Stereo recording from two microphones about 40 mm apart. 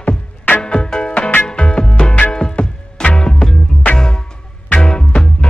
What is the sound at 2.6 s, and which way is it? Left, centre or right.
Music, left.